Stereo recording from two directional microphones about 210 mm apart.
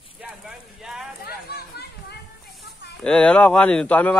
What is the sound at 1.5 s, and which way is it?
Chatter, 50° left (ahead or behind).